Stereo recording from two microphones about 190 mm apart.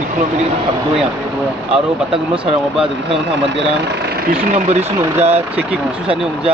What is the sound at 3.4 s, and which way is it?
Speech, 65° right (ahead or behind).